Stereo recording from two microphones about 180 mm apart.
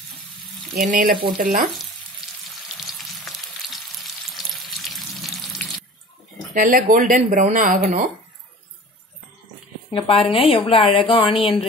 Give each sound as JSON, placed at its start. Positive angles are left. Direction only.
{"t": 0.7, "sound": "speech", "side_deg": -55}
{"t": 3.0, "sound": "frying", "side_deg": 0}
{"t": 6.5, "sound": "speech", "side_deg": -50}
{"t": 9.8, "sound": "a woman's voice", "side_deg": 30}